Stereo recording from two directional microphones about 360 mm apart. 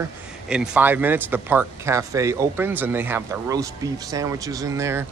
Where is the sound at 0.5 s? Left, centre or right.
Centre.